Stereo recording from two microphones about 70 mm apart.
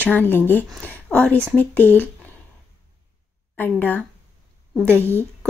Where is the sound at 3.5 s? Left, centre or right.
Left.